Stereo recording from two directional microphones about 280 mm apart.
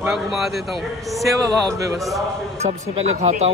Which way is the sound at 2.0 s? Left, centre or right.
Centre.